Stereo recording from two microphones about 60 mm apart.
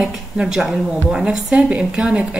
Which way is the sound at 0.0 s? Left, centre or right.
Centre.